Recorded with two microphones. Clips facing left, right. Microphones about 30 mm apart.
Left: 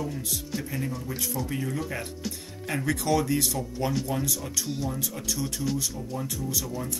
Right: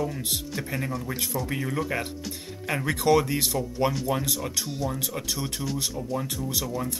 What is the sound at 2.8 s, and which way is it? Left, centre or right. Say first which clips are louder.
Speech: right 4 dB; right.